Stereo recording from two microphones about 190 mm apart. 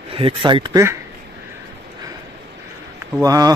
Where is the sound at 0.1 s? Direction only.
30° right (ahead or behind).